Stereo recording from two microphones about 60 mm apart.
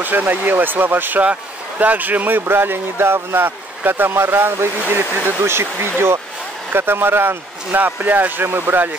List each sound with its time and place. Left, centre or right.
0.0 s speech: right